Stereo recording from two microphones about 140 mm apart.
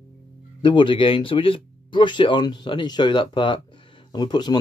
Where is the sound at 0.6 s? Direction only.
35° left (ahead or behind).